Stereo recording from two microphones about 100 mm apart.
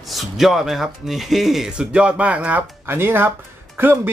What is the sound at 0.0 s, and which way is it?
Speech, centre (ahead or behind).